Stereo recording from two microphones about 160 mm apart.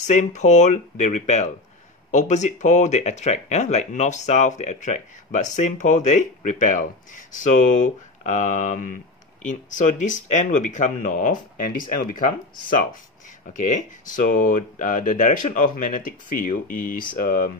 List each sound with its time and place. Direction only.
0.0 s speech: 50° left (ahead or behind)